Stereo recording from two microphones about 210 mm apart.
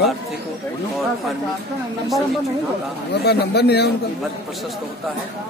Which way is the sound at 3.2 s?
50° left (ahead or behind).